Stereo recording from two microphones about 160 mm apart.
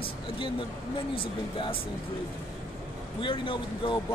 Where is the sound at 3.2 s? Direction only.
30° left (ahead or behind).